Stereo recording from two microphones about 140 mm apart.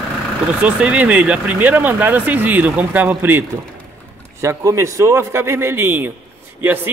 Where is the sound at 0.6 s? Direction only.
10° right (ahead or behind).